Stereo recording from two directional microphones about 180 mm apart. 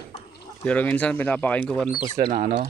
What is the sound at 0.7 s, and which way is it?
Speech, 10° left (ahead or behind).